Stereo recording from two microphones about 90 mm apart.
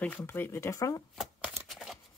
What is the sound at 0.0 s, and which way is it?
Speech, 20° left (ahead or behind).